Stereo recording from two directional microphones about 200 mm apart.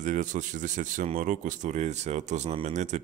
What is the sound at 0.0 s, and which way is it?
Speech, 40° right (ahead or behind).